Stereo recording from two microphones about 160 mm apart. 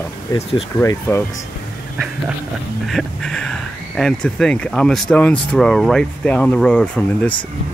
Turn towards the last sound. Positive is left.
turn(degrees=5)  # may be behind; listen again after turning